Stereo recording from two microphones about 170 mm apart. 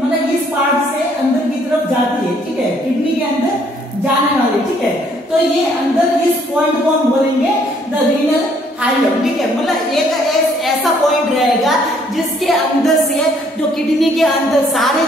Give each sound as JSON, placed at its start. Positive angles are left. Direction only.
{"t": 13.9, "sound": "a woman's voice", "side_deg": 0}